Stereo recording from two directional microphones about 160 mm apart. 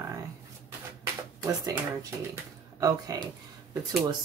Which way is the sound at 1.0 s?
20° right (ahead or behind).